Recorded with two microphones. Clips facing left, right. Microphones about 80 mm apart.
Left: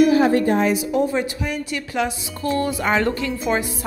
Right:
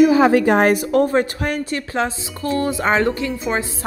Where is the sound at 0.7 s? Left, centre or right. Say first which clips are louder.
Right 4 dB; right.